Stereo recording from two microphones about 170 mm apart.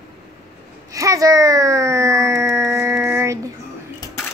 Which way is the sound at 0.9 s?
20° right (ahead or behind).